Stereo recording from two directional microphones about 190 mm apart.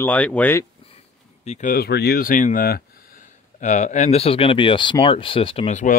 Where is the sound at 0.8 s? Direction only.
35° left (ahead or behind).